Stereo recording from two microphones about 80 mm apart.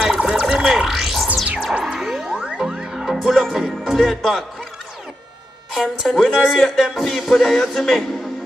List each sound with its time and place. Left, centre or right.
0.0 s music: centre
1.3 s music: centre
3.9 s speech: centre
5.8 s speech: centre